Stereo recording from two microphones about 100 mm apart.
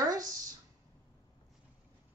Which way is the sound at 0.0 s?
35° right (ahead or behind).